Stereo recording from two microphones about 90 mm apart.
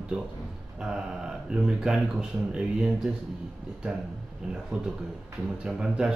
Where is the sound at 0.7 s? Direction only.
10° right (ahead or behind).